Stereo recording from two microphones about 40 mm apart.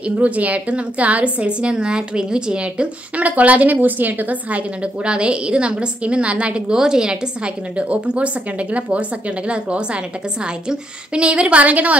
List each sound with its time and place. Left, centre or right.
0.2 s a woman's voice: right
3.3 s a woman's voice: right
5.0 s a woman's voice: right